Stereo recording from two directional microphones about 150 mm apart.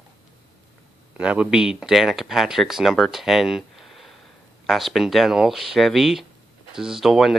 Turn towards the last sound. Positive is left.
turn(degrees=0)  # may be behind; listen again after turning